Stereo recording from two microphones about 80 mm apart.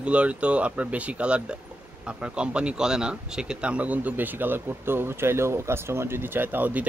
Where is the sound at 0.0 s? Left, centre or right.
Centre.